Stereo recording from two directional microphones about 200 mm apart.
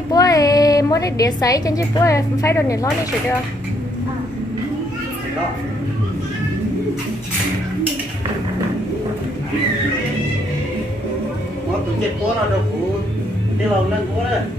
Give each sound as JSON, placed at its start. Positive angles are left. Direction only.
{"t": 0.1, "sound": "a woman's voice", "side_deg": 20}